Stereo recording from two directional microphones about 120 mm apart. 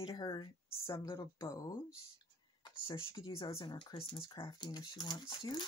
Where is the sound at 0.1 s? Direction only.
35° left (ahead or behind).